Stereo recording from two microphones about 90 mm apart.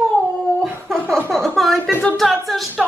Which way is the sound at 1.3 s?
Centre (ahead or behind).